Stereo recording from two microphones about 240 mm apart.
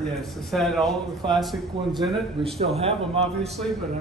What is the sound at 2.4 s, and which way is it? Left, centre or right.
Speech, right.